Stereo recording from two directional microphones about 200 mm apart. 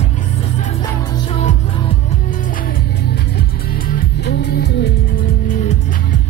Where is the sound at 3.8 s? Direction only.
55° left (ahead or behind).